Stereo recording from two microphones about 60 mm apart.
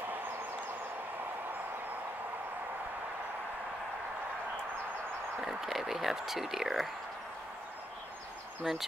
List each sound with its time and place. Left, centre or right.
5.4 s speech: centre
8.6 s speech: centre